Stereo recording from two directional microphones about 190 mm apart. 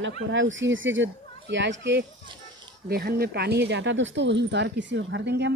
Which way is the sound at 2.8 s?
55° right (ahead or behind).